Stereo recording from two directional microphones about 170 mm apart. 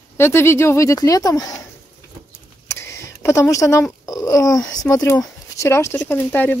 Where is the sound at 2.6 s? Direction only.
15° left (ahead or behind).